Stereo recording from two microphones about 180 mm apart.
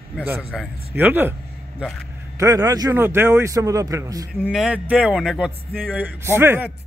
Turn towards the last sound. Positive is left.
turn(degrees=-15)  # may be behind; listen again after turning